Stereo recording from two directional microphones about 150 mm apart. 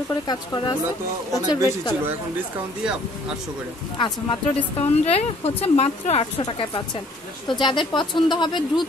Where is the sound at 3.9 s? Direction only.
35° left (ahead or behind).